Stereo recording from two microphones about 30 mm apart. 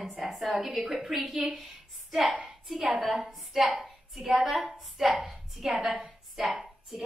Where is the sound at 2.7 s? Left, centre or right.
Centre.